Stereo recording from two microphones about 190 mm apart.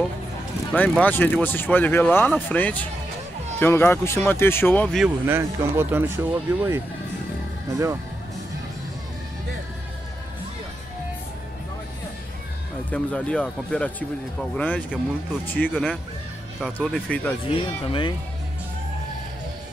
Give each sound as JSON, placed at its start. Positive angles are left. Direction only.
{"t": 0.7, "sound": "speech", "side_deg": 5}
{"t": 5.0, "sound": "speech", "side_deg": -10}
{"t": 12.9, "sound": "speech", "side_deg": 5}
{"t": 17.6, "sound": "speech", "side_deg": 30}